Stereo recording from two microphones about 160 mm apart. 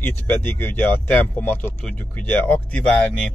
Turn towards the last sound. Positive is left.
turn(degrees=5)  # may be behind; listen again after turning